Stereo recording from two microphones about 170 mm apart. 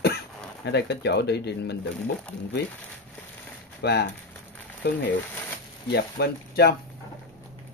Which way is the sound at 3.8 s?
75° left (ahead or behind).